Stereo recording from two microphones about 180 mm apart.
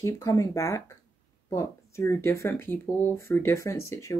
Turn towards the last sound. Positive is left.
turn(degrees=15)  # may be behind; listen again after turning